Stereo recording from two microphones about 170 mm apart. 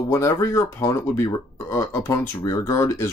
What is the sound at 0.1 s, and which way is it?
Speech, 15° left (ahead or behind).